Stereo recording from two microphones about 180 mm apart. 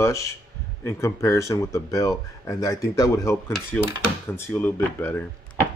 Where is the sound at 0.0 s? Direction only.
15° left (ahead or behind).